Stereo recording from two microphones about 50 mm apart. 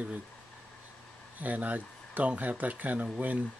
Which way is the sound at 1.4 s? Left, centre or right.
Right.